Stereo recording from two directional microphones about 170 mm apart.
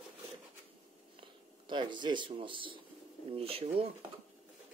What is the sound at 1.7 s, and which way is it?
Speech, 25° right (ahead or behind).